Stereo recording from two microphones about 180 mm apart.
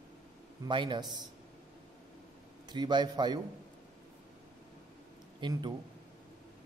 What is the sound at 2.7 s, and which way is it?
Speech, 25° right (ahead or behind).